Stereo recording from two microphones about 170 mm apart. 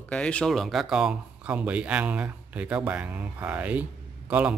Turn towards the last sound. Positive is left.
turn(degrees=-10)  # may be behind; listen again after turning